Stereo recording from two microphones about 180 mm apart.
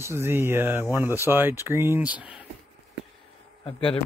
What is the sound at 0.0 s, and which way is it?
Speech, 15° right (ahead or behind).